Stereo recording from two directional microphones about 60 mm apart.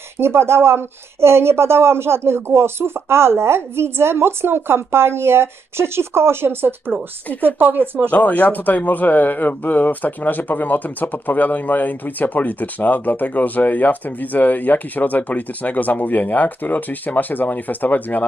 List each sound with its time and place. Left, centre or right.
0.2 s speech: right
8.1 s speech: left